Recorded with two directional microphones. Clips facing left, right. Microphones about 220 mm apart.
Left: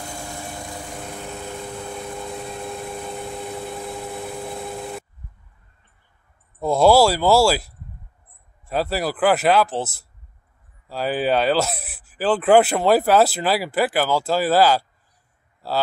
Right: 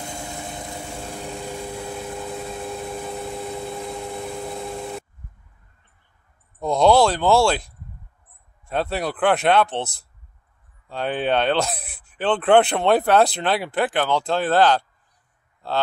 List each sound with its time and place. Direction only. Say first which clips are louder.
0.2 s lawn mower: even; 20° right (ahead or behind)
1.2 s vehicle: right 3 dB; 10° right (ahead or behind)
6.6 s speech: left 1 dB; 5° left (ahead or behind)
10.9 s speech: left 1 dB; 5° left (ahead or behind)